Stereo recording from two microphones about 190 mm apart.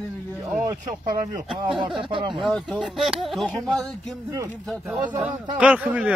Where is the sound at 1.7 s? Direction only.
25° right (ahead or behind).